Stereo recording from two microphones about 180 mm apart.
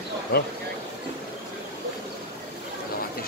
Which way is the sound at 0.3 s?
60° left (ahead or behind).